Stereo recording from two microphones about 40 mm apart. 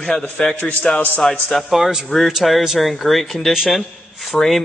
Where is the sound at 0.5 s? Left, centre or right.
Left.